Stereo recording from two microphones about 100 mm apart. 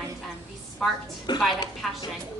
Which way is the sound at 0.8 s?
5° left (ahead or behind).